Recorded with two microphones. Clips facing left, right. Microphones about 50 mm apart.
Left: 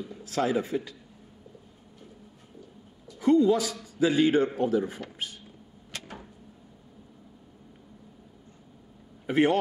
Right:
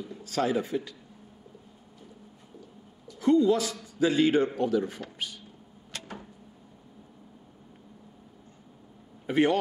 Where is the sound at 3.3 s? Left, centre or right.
Centre.